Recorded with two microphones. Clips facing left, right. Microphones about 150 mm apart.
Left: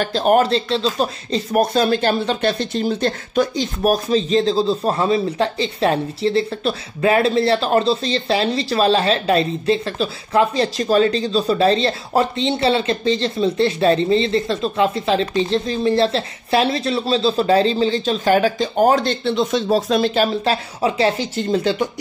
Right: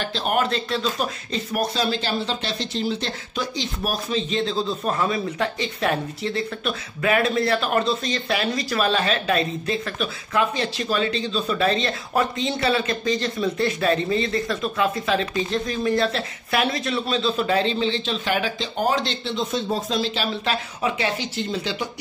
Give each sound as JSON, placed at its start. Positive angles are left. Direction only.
{"t": 0.0, "sound": "speech", "side_deg": 45}
{"t": 1.6, "sound": "speech", "side_deg": 50}
{"t": 19.3, "sound": "speech", "side_deg": 80}
{"t": 20.4, "sound": "speech", "side_deg": 35}